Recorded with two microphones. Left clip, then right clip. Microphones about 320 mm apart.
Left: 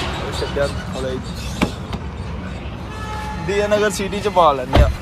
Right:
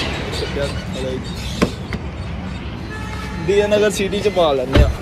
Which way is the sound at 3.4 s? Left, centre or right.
Centre.